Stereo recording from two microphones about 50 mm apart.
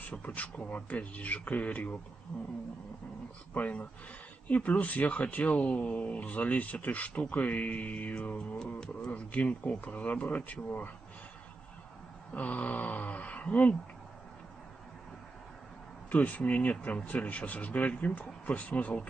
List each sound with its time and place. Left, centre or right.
0.1 s speech: left
3.5 s speech: left; by 9.1 s centre
9.1 s speech: left
12.3 s speech: left
16.1 s speech: left